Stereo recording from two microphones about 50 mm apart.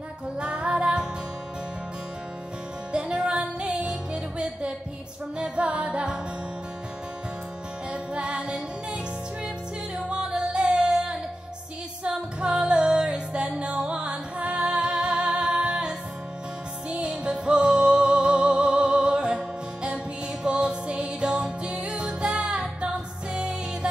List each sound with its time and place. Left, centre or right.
0.4 s music: centre
2.9 s music: right
7.9 s music: centre
10.0 s music: centre
16.9 s music: centre